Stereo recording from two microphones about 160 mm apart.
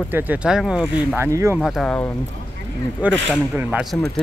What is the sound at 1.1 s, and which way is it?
Speech, 15° right (ahead or behind).